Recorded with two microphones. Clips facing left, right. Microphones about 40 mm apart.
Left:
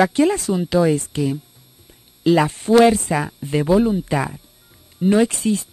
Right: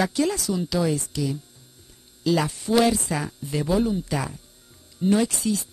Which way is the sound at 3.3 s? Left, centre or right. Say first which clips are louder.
Left 8 dB; left.